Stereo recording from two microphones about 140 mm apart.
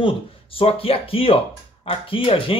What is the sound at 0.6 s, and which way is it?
Speech, 40° left (ahead or behind).